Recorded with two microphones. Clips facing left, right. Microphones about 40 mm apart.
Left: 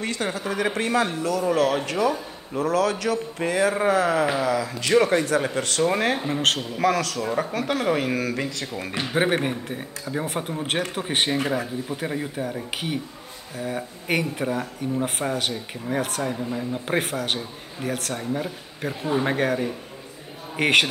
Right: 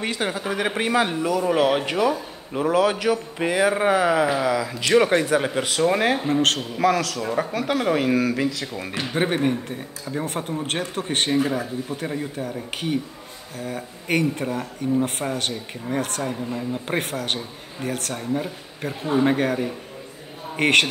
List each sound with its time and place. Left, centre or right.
0.0 s a man's voice: centre